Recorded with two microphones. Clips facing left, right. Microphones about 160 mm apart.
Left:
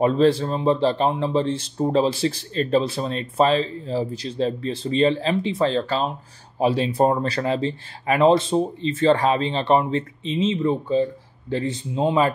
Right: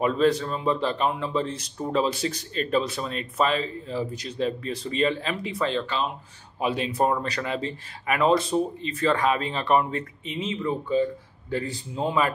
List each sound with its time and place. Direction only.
0.0 s speech: 35° left (ahead or behind)